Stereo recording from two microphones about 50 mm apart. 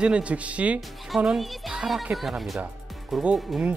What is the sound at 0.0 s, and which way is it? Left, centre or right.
Speech, right.